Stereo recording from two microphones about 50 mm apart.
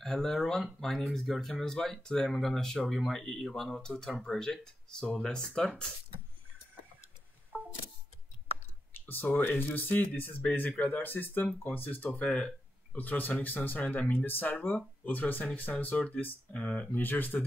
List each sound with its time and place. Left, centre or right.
0.0 s speech: centre
7.5 s camera: right
8.9 s speech: left
16.5 s speech: left
16.9 s speech: left